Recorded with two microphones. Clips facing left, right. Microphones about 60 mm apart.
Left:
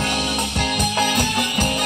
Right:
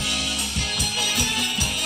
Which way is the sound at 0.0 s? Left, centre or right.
Left.